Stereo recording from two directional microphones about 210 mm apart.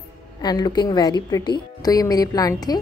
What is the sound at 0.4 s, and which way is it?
A woman's voice, 20° left (ahead or behind).